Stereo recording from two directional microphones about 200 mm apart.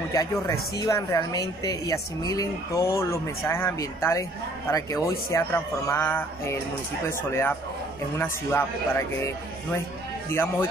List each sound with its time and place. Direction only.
0.1 s speech: 15° left (ahead or behind)